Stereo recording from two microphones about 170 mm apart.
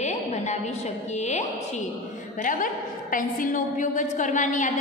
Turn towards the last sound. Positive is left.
turn(degrees=45)  # may be behind; listen again after turning